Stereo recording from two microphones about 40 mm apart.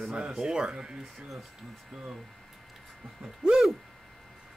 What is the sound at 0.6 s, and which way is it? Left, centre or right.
Speech, right.